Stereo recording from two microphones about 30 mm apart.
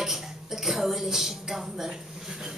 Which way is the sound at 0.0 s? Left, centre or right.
Centre.